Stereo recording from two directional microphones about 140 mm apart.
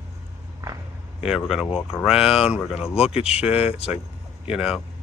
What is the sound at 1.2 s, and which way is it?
Speech, 5° right (ahead or behind).